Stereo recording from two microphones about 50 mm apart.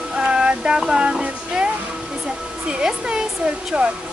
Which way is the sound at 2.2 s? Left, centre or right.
Centre.